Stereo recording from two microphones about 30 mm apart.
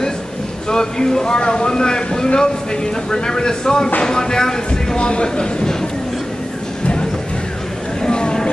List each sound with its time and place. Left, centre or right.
0.7 s speech: left
4.9 s speech: left
8.1 s a sound: left